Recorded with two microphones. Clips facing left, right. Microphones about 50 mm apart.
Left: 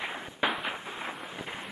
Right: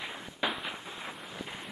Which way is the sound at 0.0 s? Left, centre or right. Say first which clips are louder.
Left 4 dB; left.